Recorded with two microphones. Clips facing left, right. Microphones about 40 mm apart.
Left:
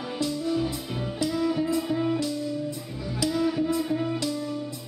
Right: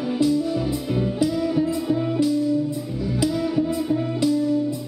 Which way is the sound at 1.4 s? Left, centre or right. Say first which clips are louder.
Right 3 dB; centre.